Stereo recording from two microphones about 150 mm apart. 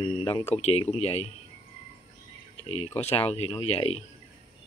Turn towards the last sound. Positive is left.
turn(degrees=40)  # may be behind; listen again after turning